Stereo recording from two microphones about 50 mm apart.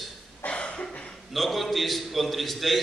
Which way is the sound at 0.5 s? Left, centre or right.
Left.